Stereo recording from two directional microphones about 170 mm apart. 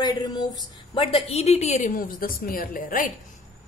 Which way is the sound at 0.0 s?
25° left (ahead or behind).